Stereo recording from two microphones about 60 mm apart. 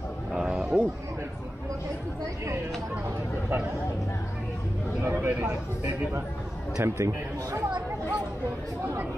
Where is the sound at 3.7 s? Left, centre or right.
Left.